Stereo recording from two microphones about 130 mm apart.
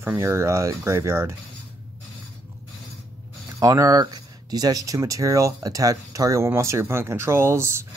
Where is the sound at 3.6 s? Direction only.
25° right (ahead or behind).